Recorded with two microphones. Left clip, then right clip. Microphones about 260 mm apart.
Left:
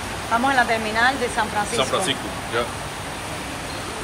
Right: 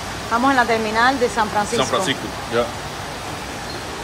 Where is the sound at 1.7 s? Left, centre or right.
Right.